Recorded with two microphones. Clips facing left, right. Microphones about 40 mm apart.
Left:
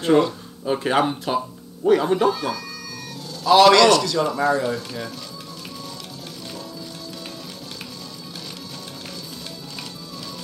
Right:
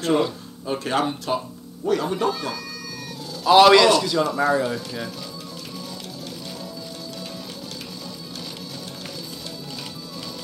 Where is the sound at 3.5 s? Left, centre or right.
Centre.